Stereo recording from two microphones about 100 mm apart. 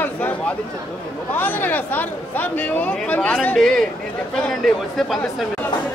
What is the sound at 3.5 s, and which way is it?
Speech, 5° left (ahead or behind).